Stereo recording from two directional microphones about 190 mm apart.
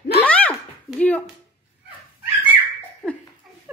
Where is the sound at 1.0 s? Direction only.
10° left (ahead or behind).